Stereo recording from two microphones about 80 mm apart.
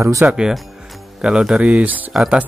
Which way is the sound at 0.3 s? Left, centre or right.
Centre.